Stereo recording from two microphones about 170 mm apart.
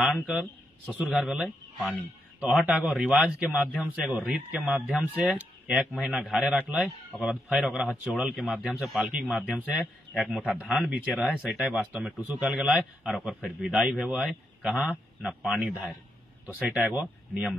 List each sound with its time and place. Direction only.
0.0 s a man's voice: centre (ahead or behind)